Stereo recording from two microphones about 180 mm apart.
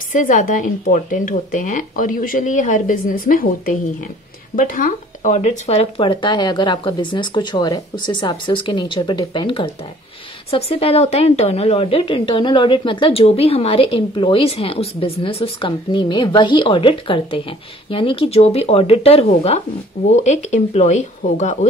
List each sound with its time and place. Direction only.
0.1 s a woman's voice: 45° left (ahead or behind)